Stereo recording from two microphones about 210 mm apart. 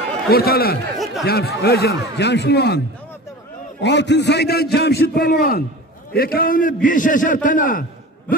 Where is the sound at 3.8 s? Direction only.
55° left (ahead or behind).